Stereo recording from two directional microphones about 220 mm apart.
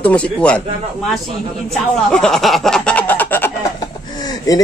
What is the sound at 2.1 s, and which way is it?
Chicken, centre (ahead or behind).